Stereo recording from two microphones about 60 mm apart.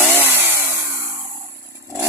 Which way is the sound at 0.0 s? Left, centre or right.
Right.